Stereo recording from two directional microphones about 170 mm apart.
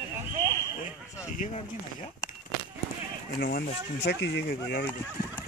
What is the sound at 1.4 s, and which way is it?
Speech, 50° left (ahead or behind).